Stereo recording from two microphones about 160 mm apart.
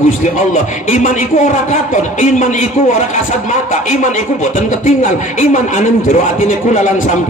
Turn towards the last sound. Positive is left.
turn(degrees=50)  # may be behind; listen again after turning